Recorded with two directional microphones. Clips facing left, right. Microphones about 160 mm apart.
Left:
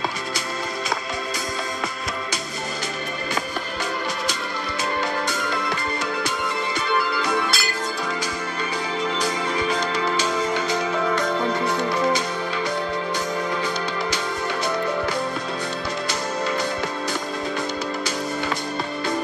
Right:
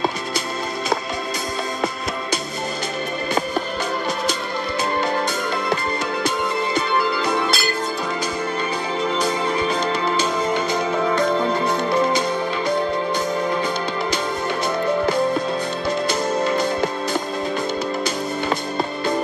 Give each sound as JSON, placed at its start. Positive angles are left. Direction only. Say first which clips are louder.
{"t": 5.1, "sound": "music", "louder": "right 3 dB", "side_deg": -25}
{"t": 7.2, "sound": "music", "louder": "right 2 dB", "side_deg": -25}
{"t": 9.2, "sound": "music", "louder": "right 3 dB", "side_deg": -25}
{"t": 10.4, "sound": "music", "louder": "right 2 dB", "side_deg": -50}
{"t": 11.1, "sound": "music", "louder": "right 5 dB", "side_deg": -25}
{"t": 16.1, "sound": "music", "louder": "right 4 dB", "side_deg": -25}